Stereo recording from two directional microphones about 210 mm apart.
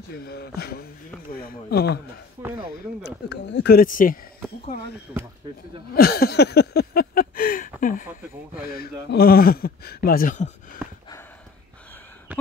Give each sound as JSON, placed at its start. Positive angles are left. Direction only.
{"t": 0.1, "sound": "speech", "side_deg": 50}
{"t": 2.4, "sound": "speech", "side_deg": -15}
{"t": 3.3, "sound": "speech", "side_deg": 55}
{"t": 5.9, "sound": "a sound", "side_deg": 45}
{"t": 8.7, "sound": "speech", "side_deg": 45}